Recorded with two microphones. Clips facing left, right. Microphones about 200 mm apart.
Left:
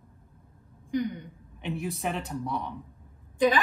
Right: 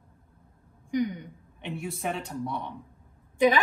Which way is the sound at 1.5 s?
Centre (ahead or behind).